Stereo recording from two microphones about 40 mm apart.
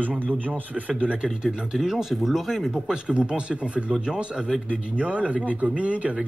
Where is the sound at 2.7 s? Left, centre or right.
Right.